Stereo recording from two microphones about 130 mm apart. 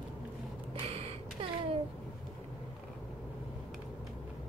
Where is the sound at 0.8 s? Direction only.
50° right (ahead or behind).